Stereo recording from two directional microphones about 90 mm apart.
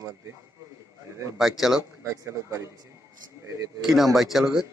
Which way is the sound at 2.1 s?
40° right (ahead or behind).